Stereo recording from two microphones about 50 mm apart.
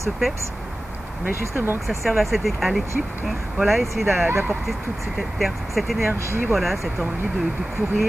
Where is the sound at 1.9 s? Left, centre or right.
Centre.